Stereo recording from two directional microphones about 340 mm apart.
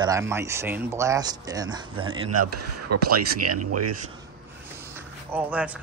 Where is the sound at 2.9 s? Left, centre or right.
Right.